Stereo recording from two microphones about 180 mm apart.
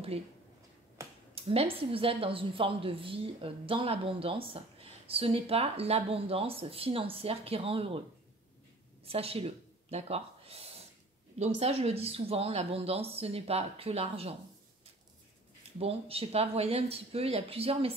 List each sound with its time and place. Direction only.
1.3 s a woman's voice: 35° right (ahead or behind)
9.0 s a woman's voice: 35° right (ahead or behind)
15.8 s a woman's voice: 30° right (ahead or behind)